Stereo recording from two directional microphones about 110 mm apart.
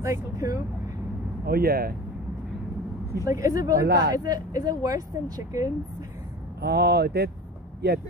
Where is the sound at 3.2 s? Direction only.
30° right (ahead or behind).